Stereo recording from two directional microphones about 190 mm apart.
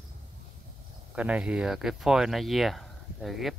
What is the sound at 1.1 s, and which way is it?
Speech, 5° right (ahead or behind).